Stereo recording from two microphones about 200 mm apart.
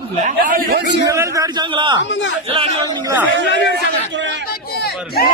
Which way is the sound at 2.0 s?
65° left (ahead or behind).